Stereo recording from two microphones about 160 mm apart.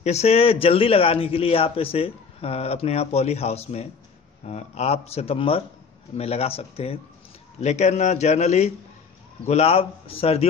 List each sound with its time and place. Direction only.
0.0 s a man's voice: 40° left (ahead or behind)